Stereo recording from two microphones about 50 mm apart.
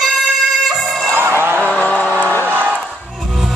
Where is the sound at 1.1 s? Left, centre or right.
Right.